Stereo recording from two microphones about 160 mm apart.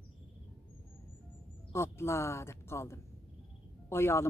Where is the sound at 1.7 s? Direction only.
15° left (ahead or behind).